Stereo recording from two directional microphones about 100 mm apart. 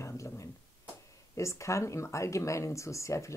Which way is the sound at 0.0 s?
25° left (ahead or behind).